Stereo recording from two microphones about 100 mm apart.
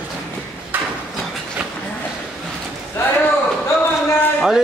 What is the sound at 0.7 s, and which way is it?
Horse, 20° right (ahead or behind).